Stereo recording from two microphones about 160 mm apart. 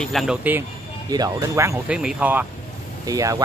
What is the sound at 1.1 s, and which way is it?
Speech, 20° right (ahead or behind).